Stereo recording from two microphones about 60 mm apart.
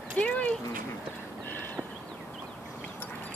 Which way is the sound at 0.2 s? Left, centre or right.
Centre.